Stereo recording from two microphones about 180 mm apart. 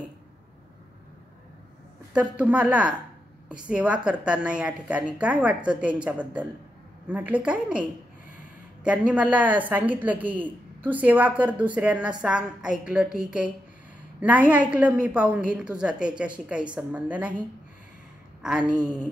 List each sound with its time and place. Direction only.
2.1 s a woman's voice: 5° right (ahead or behind)
8.8 s a woman's voice: 5° right (ahead or behind)
18.4 s a woman's voice: 5° right (ahead or behind)
18.8 s a woman's voice: 20° right (ahead or behind)